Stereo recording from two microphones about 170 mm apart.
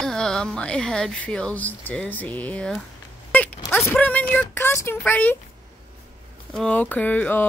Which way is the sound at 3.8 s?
10° left (ahead or behind).